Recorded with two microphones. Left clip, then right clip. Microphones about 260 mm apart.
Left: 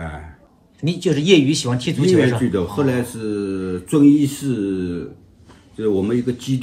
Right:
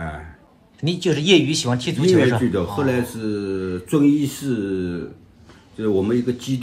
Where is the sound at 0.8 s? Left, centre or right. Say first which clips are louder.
Left 1 dB; right.